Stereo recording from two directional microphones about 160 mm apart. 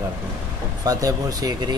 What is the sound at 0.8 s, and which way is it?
Speech, 25° right (ahead or behind).